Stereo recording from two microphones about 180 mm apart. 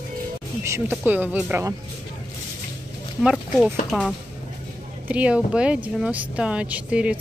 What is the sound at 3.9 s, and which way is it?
Speech, centre (ahead or behind).